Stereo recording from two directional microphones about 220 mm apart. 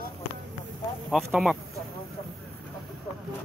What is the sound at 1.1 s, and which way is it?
Speech, centre (ahead or behind).